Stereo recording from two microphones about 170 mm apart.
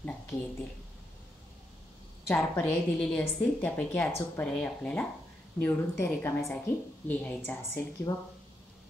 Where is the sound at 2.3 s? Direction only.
10° left (ahead or behind).